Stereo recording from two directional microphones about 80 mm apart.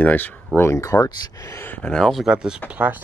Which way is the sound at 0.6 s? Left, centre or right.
Left.